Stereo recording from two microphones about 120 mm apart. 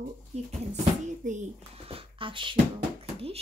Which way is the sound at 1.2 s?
90° right.